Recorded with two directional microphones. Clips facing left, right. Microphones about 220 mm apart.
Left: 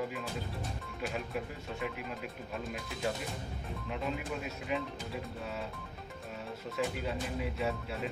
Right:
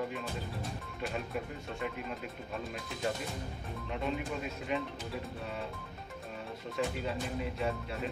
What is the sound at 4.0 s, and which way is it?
Speech, centre (ahead or behind).